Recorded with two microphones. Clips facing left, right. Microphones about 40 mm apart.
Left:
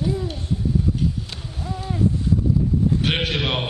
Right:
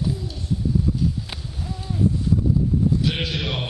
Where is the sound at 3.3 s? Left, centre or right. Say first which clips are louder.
Left 4 dB; left.